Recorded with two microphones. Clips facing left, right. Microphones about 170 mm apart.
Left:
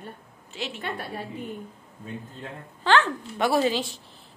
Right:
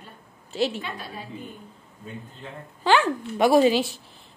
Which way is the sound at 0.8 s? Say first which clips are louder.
Left 3 dB; 65° left (ahead or behind).